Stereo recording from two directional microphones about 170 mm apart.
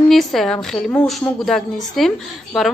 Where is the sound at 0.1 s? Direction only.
Centre (ahead or behind).